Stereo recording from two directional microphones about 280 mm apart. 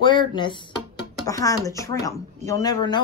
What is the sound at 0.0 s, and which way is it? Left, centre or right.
A woman's voice, centre.